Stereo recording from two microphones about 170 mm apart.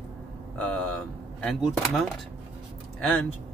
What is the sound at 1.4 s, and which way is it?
Speech, centre (ahead or behind).